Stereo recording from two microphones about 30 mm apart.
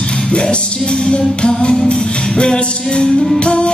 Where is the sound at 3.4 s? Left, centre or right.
Left.